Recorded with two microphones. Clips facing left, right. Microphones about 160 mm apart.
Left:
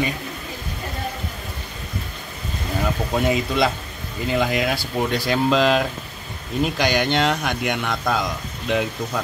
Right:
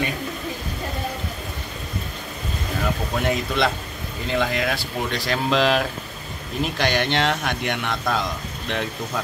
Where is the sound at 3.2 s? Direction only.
5° left (ahead or behind).